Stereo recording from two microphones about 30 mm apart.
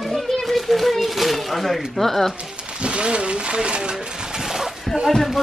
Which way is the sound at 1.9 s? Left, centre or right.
Centre.